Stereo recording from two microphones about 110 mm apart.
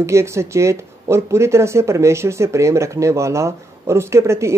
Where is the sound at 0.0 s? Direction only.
25° right (ahead or behind).